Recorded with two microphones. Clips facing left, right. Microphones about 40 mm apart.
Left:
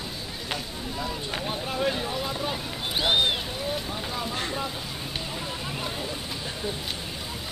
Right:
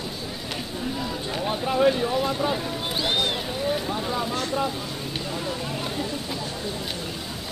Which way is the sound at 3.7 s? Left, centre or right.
Centre.